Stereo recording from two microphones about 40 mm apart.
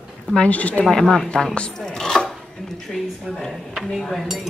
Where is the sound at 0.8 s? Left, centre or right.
Centre.